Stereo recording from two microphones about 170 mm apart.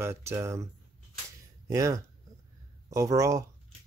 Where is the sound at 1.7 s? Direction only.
20° right (ahead or behind).